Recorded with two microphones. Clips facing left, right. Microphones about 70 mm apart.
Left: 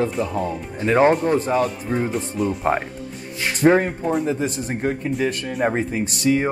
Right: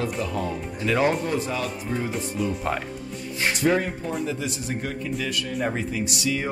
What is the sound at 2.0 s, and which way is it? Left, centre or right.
Speech, centre.